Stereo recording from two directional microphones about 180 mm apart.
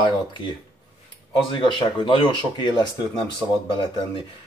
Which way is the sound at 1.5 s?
25° left (ahead or behind).